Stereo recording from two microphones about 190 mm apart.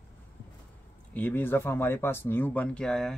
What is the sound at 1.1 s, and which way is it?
A man's voice, 10° left (ahead or behind).